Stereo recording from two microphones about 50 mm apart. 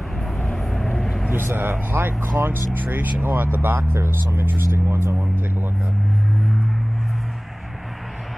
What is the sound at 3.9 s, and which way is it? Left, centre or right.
Speech, right.